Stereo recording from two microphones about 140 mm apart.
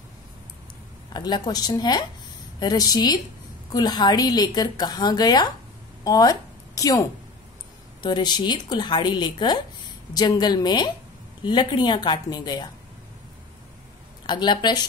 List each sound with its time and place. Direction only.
1.1 s a woman's voice: 30° left (ahead or behind)
14.2 s a woman's voice: 30° left (ahead or behind)